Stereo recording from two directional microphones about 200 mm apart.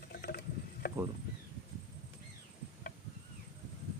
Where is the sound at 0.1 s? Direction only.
55° left (ahead or behind).